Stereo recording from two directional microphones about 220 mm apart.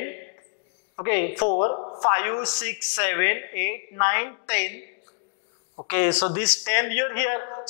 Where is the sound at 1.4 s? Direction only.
25° left (ahead or behind).